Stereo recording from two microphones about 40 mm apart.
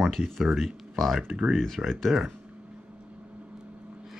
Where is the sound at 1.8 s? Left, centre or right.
Right.